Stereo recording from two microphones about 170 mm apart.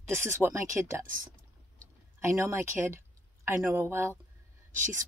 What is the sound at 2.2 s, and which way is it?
Speech, 15° right (ahead or behind).